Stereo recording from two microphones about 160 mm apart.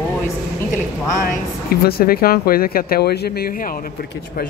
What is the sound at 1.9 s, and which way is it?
Speech, 70° left (ahead or behind).